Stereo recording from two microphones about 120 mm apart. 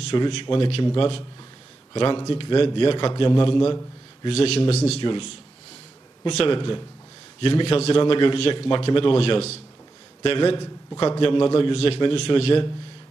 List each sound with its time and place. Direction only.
0.1 s a man's voice: 45° left (ahead or behind)
4.3 s speech: 55° left (ahead or behind)
6.3 s a man's voice: 45° left (ahead or behind)